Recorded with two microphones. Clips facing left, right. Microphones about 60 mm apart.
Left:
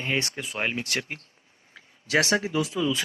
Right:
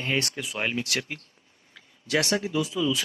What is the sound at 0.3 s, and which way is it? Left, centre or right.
Speech, left.